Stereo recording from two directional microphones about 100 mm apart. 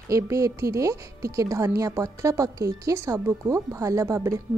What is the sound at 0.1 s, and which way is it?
A woman's voice, 30° right (ahead or behind).